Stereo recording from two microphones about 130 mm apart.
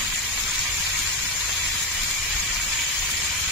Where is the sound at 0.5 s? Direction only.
10° left (ahead or behind).